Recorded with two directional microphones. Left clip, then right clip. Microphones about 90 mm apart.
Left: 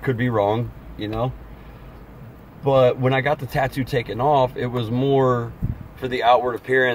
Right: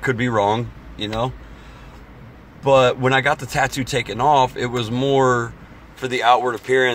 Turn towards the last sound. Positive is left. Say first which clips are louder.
# right 2 dB
turn(degrees=20)  # may be behind; listen again after turning